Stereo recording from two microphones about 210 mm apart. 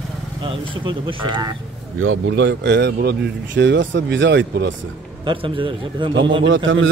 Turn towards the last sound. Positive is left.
turn(degrees=-65)  # may be behind; listen again after turning